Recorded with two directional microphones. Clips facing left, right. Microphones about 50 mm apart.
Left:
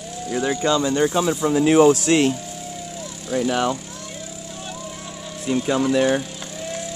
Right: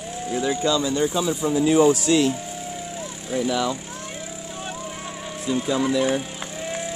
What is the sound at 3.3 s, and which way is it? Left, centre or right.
Speech, left.